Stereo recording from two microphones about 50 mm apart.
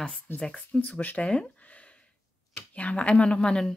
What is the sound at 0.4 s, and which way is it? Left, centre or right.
Speech, centre.